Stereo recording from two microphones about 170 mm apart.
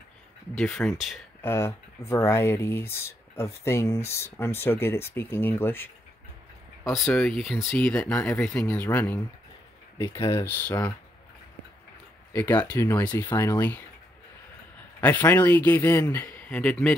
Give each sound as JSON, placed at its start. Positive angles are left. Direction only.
{"t": 0.6, "sound": "speech", "side_deg": 5}
{"t": 1.4, "sound": "speech", "side_deg": 15}
{"t": 7.1, "sound": "speech", "side_deg": 5}
{"t": 12.3, "sound": "speech", "side_deg": 10}
{"t": 15.0, "sound": "speech", "side_deg": 10}